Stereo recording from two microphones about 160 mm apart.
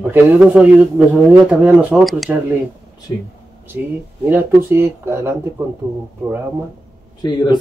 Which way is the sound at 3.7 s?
15° right (ahead or behind).